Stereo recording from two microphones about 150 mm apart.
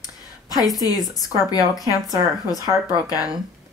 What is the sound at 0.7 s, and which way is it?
Speech, 25° left (ahead or behind).